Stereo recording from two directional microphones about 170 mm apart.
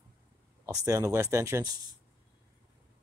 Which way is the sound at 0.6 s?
20° right (ahead or behind).